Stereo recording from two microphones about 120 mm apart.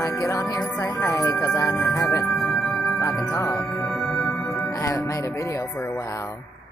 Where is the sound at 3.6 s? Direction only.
5° left (ahead or behind).